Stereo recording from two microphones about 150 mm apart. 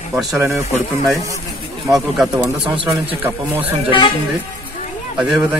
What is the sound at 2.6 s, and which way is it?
Speech, 35° right (ahead or behind).